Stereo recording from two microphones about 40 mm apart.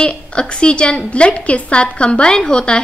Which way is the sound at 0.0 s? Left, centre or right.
Left.